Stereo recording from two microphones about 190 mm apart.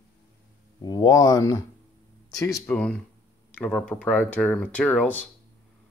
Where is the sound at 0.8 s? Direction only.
20° left (ahead or behind).